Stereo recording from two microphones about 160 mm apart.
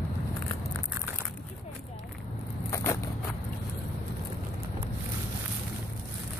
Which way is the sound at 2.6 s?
15° left (ahead or behind).